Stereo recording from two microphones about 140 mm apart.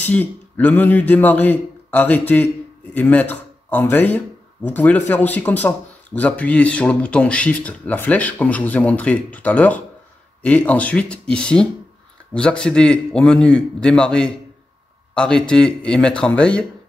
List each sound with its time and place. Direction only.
0.0 s speech: 10° left (ahead or behind)